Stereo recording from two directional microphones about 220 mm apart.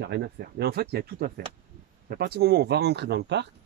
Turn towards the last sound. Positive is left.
turn(degrees=-50)  # may be behind; listen again after turning